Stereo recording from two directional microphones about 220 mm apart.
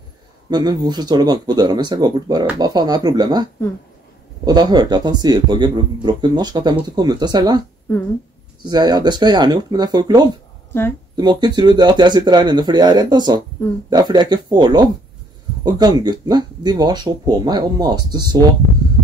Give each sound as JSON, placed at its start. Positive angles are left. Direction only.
{"t": 0.5, "sound": "speech", "side_deg": -20}
{"t": 4.5, "sound": "speech", "side_deg": -20}
{"t": 8.6, "sound": "speech", "side_deg": -20}